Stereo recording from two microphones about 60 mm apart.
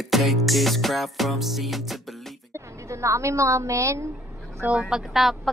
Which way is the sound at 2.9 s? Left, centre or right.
Right.